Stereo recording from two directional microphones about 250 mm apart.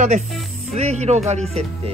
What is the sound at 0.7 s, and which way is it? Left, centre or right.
Speech, right.